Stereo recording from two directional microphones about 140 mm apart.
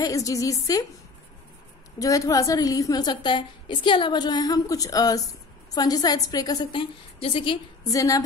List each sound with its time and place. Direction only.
0.0 s a woman's voice: 25° left (ahead or behind)
2.0 s a woman's voice: 25° left (ahead or behind)
7.9 s a woman's voice: 25° left (ahead or behind)